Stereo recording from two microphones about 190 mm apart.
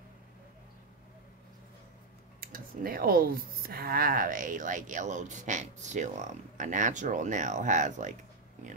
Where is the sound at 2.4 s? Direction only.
50° right (ahead or behind).